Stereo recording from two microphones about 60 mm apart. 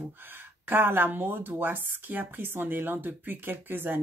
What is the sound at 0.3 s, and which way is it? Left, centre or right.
A woman's voice, right.